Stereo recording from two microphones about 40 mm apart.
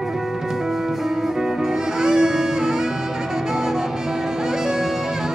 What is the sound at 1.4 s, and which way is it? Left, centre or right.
Music, centre.